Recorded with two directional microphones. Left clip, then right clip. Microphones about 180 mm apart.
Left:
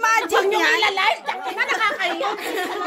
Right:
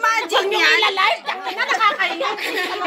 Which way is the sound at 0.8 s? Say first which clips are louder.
Right 2 dB; 15° right (ahead or behind).